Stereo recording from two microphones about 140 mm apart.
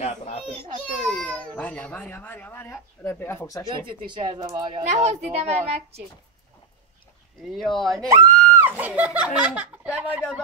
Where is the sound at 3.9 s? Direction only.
35° right (ahead or behind).